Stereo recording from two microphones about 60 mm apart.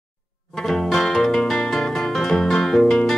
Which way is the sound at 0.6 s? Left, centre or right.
Centre.